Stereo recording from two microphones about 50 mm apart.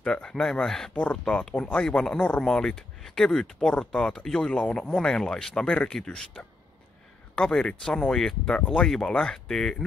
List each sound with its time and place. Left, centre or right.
0.0 s speech: centre
7.3 s speech: centre